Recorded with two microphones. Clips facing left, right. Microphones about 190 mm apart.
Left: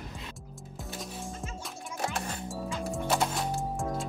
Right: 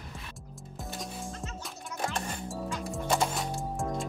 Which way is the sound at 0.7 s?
Centre (ahead or behind).